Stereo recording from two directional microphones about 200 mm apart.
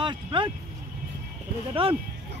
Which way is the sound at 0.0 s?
25° right (ahead or behind).